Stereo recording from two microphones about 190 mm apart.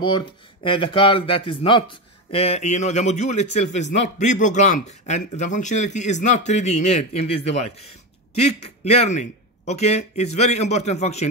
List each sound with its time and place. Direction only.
0.0 s speech: 25° left (ahead or behind)